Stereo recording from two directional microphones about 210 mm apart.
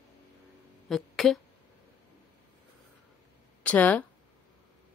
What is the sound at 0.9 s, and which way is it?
Speech, centre (ahead or behind).